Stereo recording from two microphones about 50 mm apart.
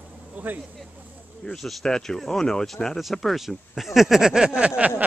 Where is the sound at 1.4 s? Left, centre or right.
Centre.